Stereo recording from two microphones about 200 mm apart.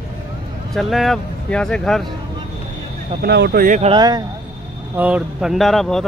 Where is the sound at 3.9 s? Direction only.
20° right (ahead or behind).